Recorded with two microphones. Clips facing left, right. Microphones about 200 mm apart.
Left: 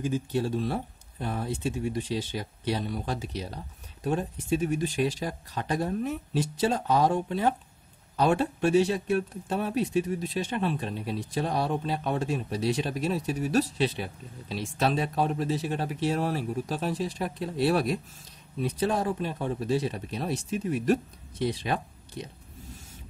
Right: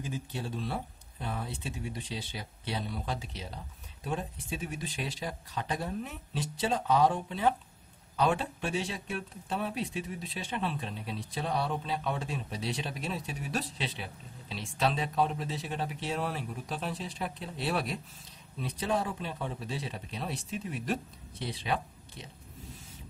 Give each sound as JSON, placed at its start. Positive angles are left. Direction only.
{"t": 0.0, "sound": "speech", "side_deg": 45}